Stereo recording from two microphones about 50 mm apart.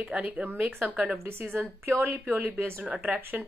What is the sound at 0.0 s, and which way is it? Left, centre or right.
Speech, right.